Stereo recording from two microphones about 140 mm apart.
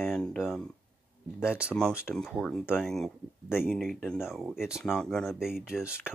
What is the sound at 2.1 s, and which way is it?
Speech, 5° left (ahead or behind).